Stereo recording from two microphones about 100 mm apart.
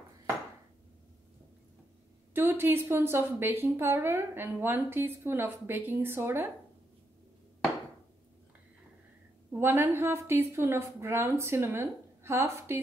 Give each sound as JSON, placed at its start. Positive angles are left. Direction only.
{"t": 2.3, "sound": "a woman's voice", "side_deg": -20}
{"t": 9.5, "sound": "a woman's voice", "side_deg": -20}